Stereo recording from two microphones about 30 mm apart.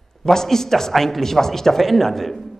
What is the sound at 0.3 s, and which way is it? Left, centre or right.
A man's voice, centre.